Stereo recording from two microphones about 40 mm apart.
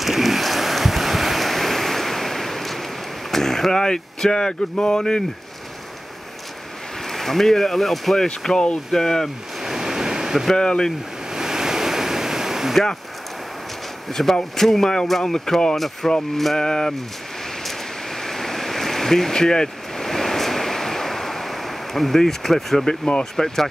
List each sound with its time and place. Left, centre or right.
0.0 s a sound: centre
3.3 s speech: centre
7.1 s speech: centre
8.5 s speech: centre
9.6 s waves: centre
10.5 s speech: left
11.3 s waves: centre
14.1 s speech: centre
17.6 s a sound: centre
22.8 s speech: left
23.3 s speech: centre